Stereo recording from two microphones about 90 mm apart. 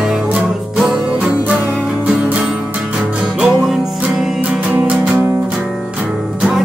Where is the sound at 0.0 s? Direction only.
5° right (ahead or behind).